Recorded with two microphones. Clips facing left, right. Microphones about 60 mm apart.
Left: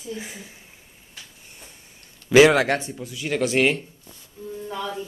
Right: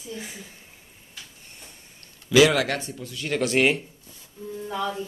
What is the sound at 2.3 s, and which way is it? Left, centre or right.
Speech, left.